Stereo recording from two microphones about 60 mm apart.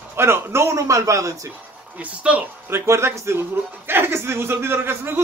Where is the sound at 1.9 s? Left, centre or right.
Right.